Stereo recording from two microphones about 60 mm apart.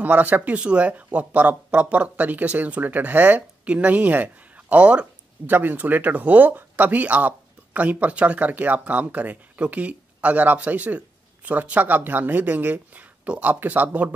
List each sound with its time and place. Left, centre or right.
0.0 s speech: right
5.5 s speech: right